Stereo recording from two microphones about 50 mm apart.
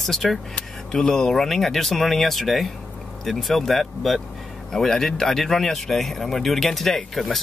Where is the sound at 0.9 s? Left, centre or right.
Centre.